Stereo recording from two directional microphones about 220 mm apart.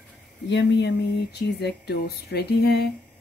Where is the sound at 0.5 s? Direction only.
50° left (ahead or behind).